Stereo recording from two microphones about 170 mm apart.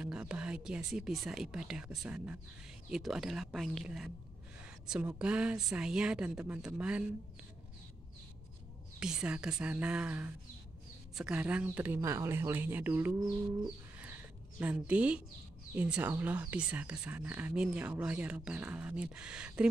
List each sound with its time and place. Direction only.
0.0 s speech: 5° right (ahead or behind)
9.0 s speech: 5° right (ahead or behind)
13.2 s bird: 25° right (ahead or behind)
14.6 s speech: 10° right (ahead or behind)